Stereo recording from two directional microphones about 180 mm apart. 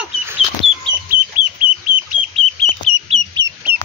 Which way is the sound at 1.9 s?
55° right (ahead or behind).